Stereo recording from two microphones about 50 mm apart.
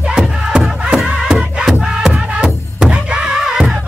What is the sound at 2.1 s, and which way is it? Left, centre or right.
Music, right.